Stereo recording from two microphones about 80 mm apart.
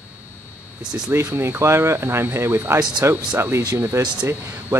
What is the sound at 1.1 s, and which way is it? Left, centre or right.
Speech, right.